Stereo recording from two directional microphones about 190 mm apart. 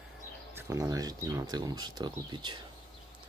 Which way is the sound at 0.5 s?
15° right (ahead or behind).